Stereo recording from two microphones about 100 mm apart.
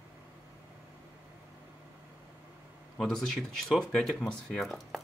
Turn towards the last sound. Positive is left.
turn(degrees=0)  # may be behind; listen again after turning